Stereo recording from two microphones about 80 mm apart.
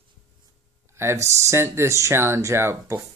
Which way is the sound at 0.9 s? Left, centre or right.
Right.